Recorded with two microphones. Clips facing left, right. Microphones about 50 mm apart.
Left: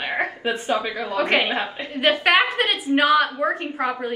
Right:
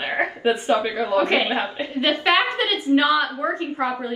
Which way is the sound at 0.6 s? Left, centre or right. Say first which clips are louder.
Right 3 dB; right.